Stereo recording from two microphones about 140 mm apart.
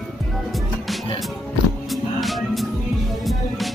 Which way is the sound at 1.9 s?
Centre (ahead or behind).